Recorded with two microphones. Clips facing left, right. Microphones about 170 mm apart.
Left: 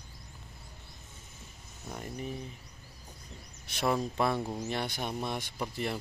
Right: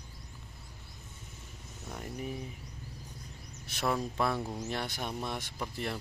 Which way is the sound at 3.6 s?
Centre (ahead or behind).